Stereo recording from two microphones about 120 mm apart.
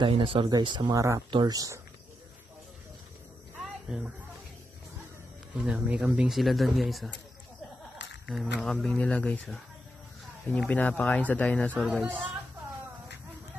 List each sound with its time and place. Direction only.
0.0 s speech: 50° right (ahead or behind)
0.9 s speech: 25° right (ahead or behind)
3.6 s a sound: 5° right (ahead or behind)
5.5 s speech: 10° right (ahead or behind)
8.3 s speech: centre (ahead or behind)
10.7 s speech: 10° left (ahead or behind)
11.7 s speech: 10° right (ahead or behind)